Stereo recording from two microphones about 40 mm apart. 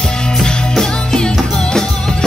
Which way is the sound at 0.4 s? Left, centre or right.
Centre.